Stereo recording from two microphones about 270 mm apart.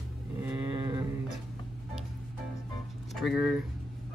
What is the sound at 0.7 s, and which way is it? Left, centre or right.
Speech, centre.